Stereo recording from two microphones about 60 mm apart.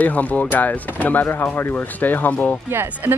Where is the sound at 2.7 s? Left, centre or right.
Right.